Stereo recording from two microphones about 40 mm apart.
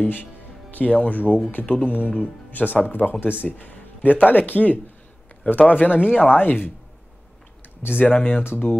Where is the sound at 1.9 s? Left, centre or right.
Left.